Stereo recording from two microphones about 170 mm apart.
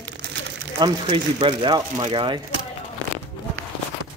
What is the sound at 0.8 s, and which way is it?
Speech, 30° right (ahead or behind).